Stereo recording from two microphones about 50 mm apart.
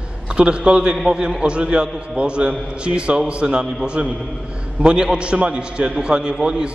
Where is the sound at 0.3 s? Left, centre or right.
Right.